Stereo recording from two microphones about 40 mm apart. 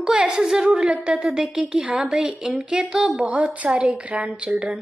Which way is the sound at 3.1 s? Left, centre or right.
Right.